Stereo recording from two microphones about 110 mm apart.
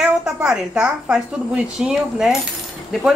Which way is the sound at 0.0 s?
5° right (ahead or behind).